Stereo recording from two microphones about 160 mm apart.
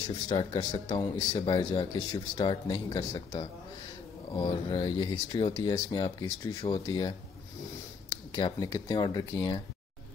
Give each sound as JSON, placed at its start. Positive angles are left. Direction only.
{"t": 0.1, "sound": "speech", "side_deg": 30}